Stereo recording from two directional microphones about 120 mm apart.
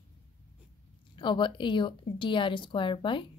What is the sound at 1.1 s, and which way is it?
Speech, 40° left (ahead or behind).